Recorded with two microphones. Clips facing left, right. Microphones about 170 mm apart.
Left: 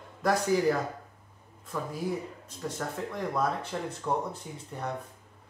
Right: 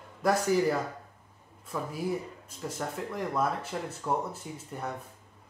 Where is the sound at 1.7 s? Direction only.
10° right (ahead or behind).